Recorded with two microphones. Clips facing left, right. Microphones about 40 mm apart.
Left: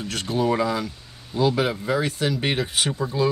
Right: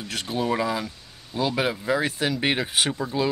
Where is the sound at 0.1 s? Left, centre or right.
Centre.